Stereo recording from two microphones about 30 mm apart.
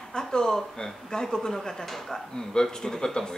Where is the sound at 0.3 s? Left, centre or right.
Left.